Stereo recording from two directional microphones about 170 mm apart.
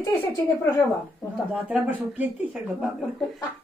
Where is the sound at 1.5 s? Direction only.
5° right (ahead or behind).